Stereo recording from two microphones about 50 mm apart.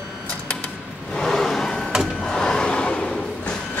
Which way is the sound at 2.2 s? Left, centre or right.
Centre.